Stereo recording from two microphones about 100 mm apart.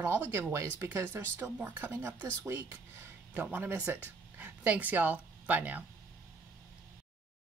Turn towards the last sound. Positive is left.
turn(degrees=-15)  # may be behind; listen again after turning